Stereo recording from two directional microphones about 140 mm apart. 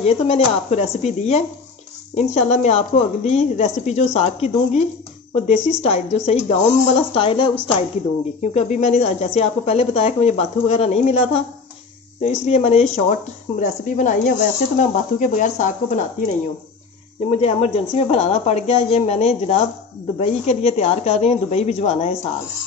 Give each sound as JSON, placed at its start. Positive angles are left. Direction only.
{"t": 0.0, "sound": "a woman's voice", "side_deg": 50}
{"t": 8.4, "sound": "a woman's voice", "side_deg": 55}
{"t": 13.6, "sound": "a woman's voice", "side_deg": 60}